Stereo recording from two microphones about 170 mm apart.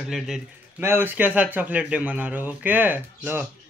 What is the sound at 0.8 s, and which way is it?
A man's voice, 10° right (ahead or behind).